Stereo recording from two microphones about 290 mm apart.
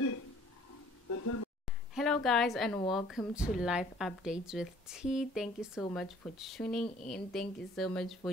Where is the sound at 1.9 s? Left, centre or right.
Centre.